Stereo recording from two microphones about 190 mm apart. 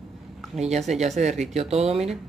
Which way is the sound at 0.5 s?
35° right (ahead or behind).